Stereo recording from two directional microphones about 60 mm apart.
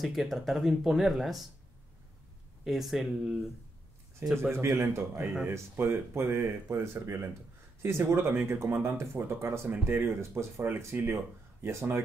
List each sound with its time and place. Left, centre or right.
0.0 s speech: centre
2.6 s speech: centre
4.2 s speech: right